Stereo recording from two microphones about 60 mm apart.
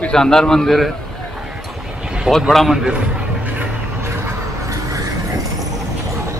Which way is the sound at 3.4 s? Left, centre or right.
Right.